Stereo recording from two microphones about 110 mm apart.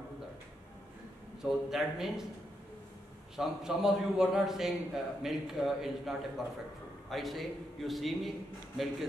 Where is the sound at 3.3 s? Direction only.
5° right (ahead or behind).